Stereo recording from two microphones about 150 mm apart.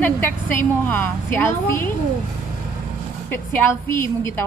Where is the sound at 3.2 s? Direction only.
15° left (ahead or behind).